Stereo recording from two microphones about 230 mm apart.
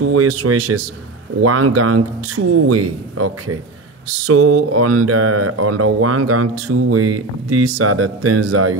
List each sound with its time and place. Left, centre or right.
0.0 s speech: right